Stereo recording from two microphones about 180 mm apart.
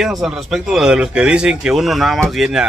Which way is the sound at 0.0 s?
Centre (ahead or behind).